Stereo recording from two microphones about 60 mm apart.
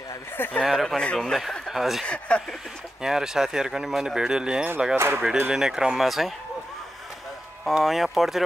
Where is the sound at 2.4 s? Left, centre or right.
Centre.